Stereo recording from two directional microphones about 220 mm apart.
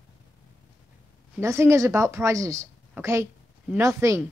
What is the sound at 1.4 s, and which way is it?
A woman's voice, 15° right (ahead or behind).